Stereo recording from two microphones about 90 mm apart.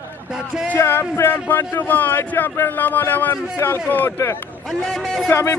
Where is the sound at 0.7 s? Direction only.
25° left (ahead or behind).